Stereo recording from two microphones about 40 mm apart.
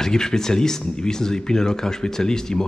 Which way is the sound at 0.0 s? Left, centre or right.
Centre.